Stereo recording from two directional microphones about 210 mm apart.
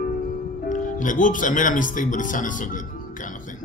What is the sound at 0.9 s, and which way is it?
Speech, 40° left (ahead or behind).